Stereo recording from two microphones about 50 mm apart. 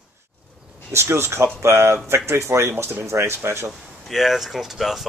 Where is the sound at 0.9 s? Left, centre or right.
Right.